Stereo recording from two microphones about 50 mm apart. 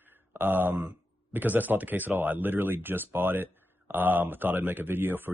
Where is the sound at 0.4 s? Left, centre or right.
Right.